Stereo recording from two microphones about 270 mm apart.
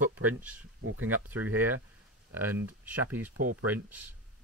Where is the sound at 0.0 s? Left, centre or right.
Centre.